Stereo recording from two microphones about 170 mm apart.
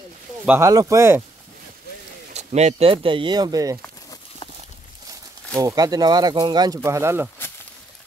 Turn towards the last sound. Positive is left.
turn(degrees=-15)  # may be behind; listen again after turning